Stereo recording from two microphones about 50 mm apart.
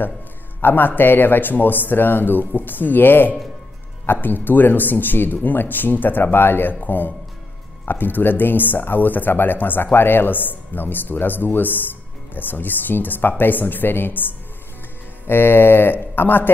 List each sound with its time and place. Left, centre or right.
0.6 s speech: left